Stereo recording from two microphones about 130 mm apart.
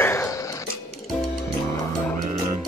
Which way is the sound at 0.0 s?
20° left (ahead or behind).